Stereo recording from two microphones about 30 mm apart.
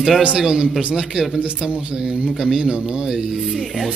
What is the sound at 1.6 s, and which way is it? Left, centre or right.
Speech, right.